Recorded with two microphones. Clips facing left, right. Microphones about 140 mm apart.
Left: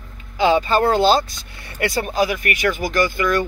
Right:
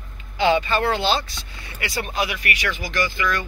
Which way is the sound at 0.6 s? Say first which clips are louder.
Left 5 dB; 40° left (ahead or behind).